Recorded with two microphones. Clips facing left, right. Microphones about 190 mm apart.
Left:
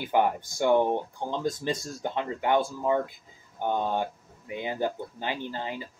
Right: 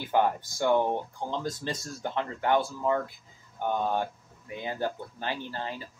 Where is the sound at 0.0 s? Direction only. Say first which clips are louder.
Left 1 dB; 15° left (ahead or behind).